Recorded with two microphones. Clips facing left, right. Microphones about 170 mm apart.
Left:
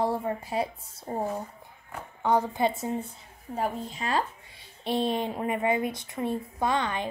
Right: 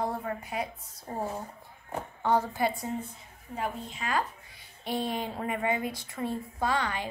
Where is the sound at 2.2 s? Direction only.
15° left (ahead or behind).